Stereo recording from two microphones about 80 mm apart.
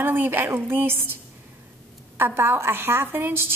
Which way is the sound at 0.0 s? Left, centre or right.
Right.